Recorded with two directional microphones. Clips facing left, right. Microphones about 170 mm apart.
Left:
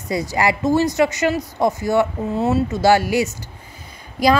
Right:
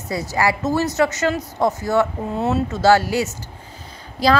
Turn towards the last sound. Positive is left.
turn(degrees=15)  # may be behind; listen again after turning